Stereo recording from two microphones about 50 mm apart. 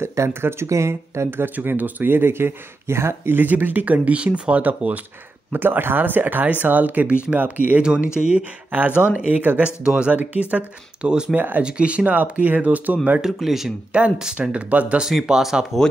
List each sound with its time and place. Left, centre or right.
0.0 s a sound: right
0.3 s speech: right
0.7 s speech: right
1.3 s speech: right
3.3 s speech: right
5.5 s speech: right
7.8 s speech: centre
10.1 s speech: right
11.0 s speech: centre
11.3 s speech: right
11.6 s speech: right
13.2 s speech: centre
14.5 s speech: right
15.2 s speech: centre